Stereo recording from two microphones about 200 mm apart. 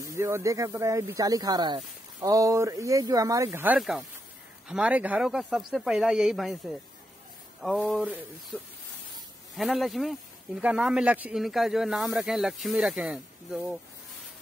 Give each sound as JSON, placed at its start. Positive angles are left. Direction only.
{"t": 0.0, "sound": "speech", "side_deg": -15}
{"t": 9.6, "sound": "speech", "side_deg": 0}